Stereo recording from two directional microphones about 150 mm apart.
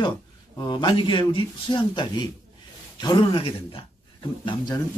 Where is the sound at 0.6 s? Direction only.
30° left (ahead or behind).